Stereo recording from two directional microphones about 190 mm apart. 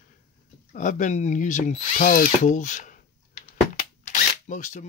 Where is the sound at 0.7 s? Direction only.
40° left (ahead or behind).